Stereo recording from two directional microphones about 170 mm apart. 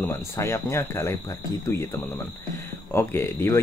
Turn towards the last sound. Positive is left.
turn(degrees=15)  # may be behind; listen again after turning